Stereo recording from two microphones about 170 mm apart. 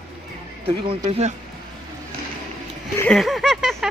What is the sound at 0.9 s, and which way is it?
Speech, 35° right (ahead or behind).